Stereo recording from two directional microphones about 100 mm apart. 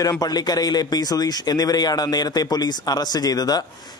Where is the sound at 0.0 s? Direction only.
40° left (ahead or behind).